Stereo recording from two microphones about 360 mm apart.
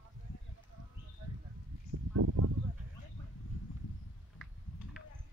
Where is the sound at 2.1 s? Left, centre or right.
Right.